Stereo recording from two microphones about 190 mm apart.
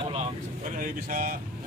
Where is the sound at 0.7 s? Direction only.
45° right (ahead or behind).